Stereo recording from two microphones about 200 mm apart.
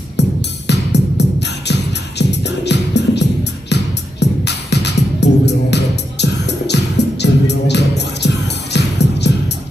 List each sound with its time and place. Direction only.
0.7 s music: 60° left (ahead or behind)